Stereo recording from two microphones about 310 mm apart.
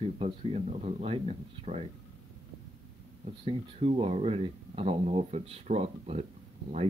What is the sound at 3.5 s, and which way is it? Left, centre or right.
Speech, centre.